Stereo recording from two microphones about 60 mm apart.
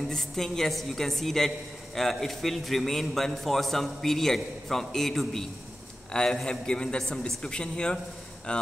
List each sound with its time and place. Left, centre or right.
0.1 s a woman's voice: centre